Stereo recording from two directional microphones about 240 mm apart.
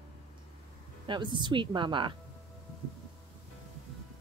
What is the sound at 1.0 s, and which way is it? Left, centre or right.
Speech, centre.